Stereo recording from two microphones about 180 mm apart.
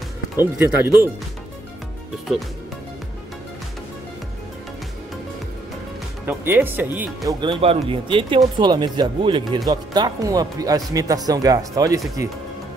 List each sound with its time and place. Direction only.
0.4 s speech: 15° right (ahead or behind)
6.2 s speech: 10° right (ahead or behind)
7.2 s speech: 25° right (ahead or behind)